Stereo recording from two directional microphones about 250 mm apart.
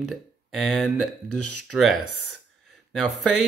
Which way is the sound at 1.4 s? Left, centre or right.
Left.